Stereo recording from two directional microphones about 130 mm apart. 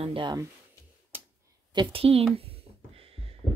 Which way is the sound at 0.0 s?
40° right (ahead or behind).